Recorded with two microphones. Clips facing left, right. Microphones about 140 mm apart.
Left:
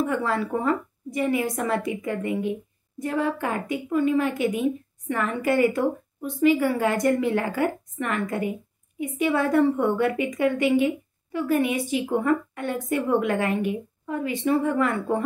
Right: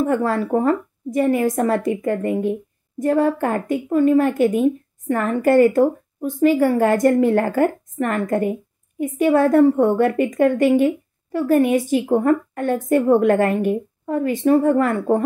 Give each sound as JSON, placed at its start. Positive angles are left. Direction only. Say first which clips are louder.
{"t": 0.0, "sound": "a woman's voice", "louder": "right 5 dB", "side_deg": -45}